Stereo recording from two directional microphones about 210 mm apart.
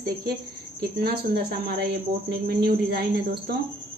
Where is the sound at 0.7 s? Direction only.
50° right (ahead or behind).